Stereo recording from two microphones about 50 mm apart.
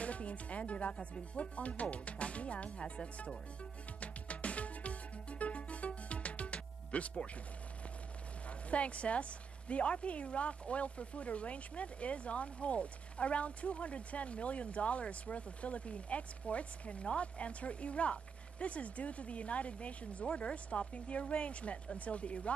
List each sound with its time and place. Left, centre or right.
0.0 s music: left
1.1 s speech: left
4.0 s music: left
8.5 s speech: left
20.2 s speech: centre